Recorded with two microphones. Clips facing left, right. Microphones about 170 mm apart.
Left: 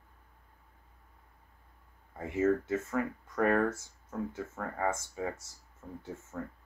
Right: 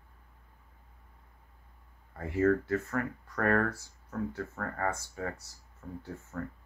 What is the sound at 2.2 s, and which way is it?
Speech, 20° left (ahead or behind).